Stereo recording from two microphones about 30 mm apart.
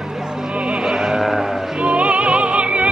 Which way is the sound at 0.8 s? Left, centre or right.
Centre.